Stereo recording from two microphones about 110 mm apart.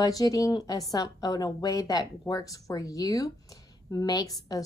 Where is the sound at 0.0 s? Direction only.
35° left (ahead or behind).